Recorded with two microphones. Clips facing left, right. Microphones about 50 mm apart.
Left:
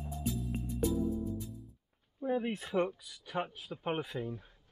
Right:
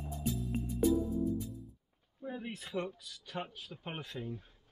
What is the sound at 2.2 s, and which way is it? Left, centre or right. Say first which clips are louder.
Speech: left 8 dB; left.